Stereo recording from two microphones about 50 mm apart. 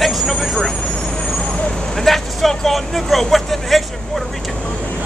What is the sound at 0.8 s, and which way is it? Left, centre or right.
Vehicle, centre.